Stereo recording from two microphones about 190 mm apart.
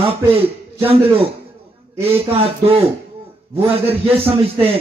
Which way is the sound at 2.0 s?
30° right (ahead or behind).